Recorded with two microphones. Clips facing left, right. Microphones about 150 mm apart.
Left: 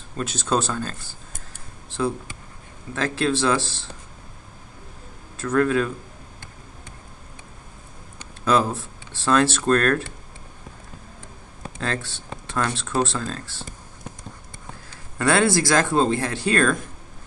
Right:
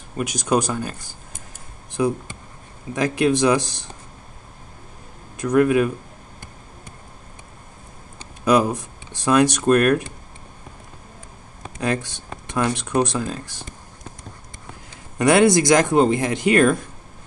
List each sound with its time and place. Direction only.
0.1 s speech: 15° right (ahead or behind)
1.9 s a sound: 15° right (ahead or behind)
2.9 s speech: 15° right (ahead or behind)
5.4 s speech: 15° right (ahead or behind)
8.5 s speech: 15° right (ahead or behind)
11.8 s speech: 15° right (ahead or behind)
14.9 s speech: 15° right (ahead or behind)